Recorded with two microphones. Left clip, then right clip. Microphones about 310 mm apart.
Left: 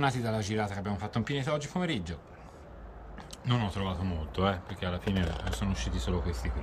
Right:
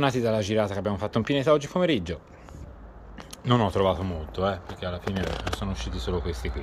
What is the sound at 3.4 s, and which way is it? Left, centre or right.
Speech, centre.